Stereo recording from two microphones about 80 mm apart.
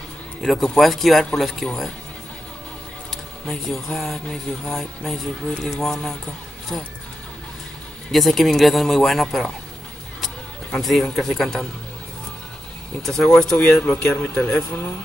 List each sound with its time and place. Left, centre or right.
0.4 s speech: centre
3.1 s speech: centre
8.1 s speech: centre
13.0 s speech: centre
14.1 s speech: left